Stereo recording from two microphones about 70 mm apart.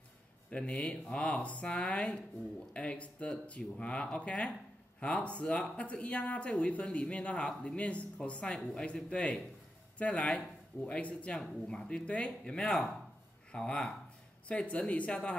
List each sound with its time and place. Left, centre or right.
0.5 s speech: centre